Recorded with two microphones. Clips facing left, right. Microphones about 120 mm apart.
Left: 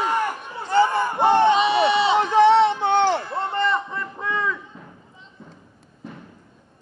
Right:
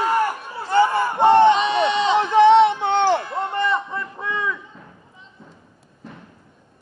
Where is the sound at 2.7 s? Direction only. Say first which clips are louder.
Right 1 dB; 15° right (ahead or behind).